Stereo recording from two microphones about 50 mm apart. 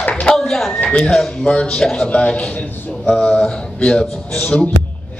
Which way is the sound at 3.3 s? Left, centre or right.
Centre.